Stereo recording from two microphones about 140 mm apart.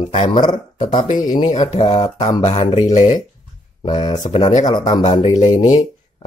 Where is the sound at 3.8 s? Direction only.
35° left (ahead or behind).